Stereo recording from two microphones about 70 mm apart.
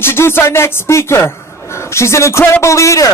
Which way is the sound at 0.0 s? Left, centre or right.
Left.